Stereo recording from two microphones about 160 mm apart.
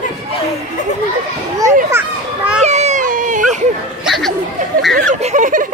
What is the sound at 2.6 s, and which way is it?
Baby cry, 45° right (ahead or behind).